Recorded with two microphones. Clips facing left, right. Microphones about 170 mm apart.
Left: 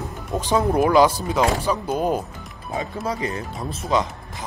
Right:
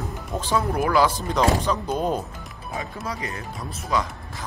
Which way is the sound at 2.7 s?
25° left (ahead or behind).